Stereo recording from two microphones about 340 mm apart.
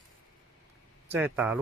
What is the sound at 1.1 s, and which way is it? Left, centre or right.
Speech, centre.